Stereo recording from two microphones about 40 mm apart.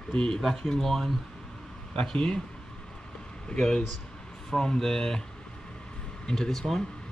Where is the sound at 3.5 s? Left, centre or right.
Centre.